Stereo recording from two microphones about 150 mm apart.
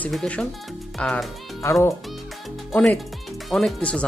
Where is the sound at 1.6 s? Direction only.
20° left (ahead or behind).